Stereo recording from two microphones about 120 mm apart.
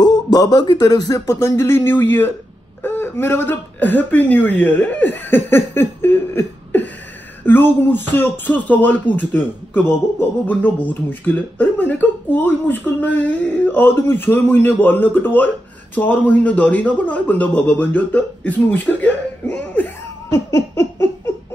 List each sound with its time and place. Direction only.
0.0 s speech: 35° left (ahead or behind); by 19.9 s 10° left (ahead or behind)